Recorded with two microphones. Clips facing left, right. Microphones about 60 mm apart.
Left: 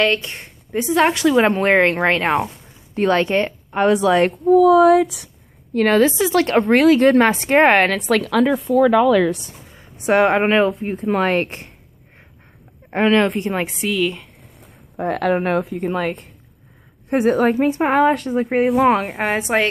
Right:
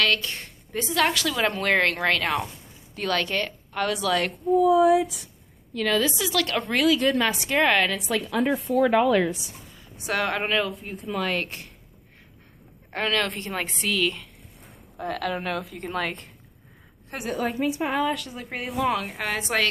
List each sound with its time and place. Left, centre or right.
0.0 s a woman's voice: left
4.5 s speech: left
5.7 s a woman's voice: left
7.9 s speech: left
9.8 s a woman's voice: left
12.9 s a woman's voice: left
13.7 s a woman's voice: centre
15.0 s a woman's voice: left
17.3 s a woman's voice: left